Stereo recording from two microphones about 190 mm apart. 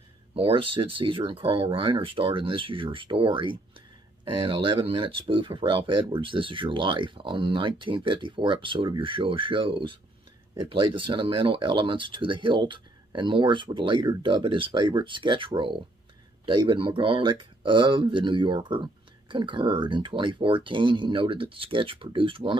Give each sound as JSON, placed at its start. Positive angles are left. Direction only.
{"t": 0.3, "sound": "speech", "side_deg": -30}